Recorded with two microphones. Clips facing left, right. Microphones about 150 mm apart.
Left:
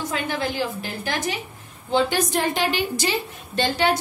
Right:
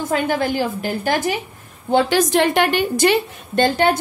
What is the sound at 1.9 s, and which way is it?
A woman's voice, 75° right (ahead or behind).